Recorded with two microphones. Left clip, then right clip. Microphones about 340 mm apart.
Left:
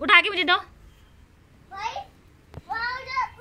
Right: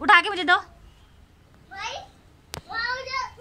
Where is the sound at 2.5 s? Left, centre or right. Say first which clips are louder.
Right 9 dB; right.